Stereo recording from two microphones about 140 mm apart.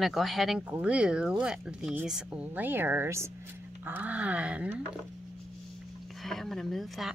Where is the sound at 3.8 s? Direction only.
10° right (ahead or behind).